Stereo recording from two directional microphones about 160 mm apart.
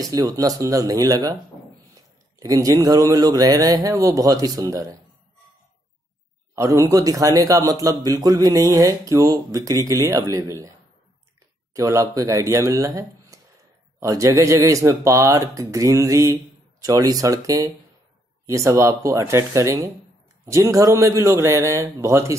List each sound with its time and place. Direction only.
0.0 s a man's voice: 20° right (ahead or behind)
6.5 s a man's voice: 20° right (ahead or behind)
11.7 s a man's voice: 20° right (ahead or behind)